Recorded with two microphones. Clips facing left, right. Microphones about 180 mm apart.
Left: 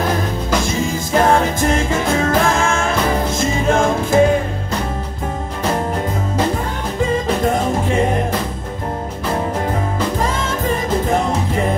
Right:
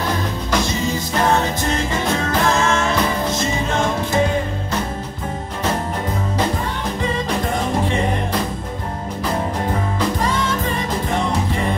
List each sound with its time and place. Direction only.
0.7 s music: 50° left (ahead or behind)